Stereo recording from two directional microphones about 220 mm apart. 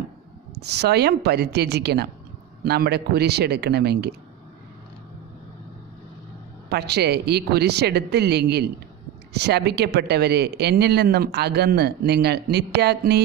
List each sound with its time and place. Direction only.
0.6 s speech: 50° right (ahead or behind)
6.7 s speech: 50° right (ahead or behind)